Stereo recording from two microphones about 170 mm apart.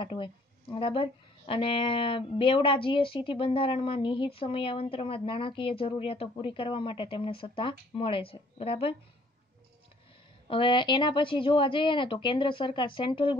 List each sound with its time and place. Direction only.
0.0 s a woman's voice: 30° left (ahead or behind)
10.5 s a woman's voice: 30° left (ahead or behind)